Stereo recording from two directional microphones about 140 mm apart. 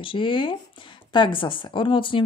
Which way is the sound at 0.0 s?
35° left (ahead or behind).